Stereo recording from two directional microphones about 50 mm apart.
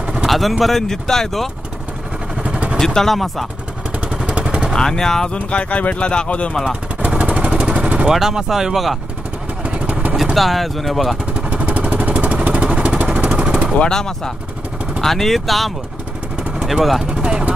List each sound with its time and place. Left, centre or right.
0.0 s a sound: centre
0.3 s speech: centre
2.4 s vehicle: right
2.8 s speech: centre
4.1 s vehicle: centre
4.7 s speech: centre
5.3 s speech: left
7.0 s vehicle: right
8.1 s speech: centre
9.7 s vehicle: right
10.3 s speech: centre
11.3 s vehicle: right
13.7 s speech: centre
17.0 s speech: centre